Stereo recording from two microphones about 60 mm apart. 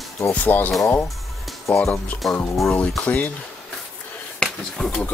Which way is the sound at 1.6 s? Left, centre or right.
Left.